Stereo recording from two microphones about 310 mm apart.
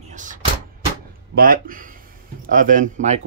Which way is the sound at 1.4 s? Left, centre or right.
Right.